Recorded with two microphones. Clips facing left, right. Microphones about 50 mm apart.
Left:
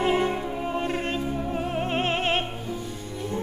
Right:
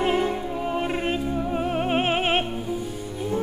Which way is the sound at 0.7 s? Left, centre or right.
Centre.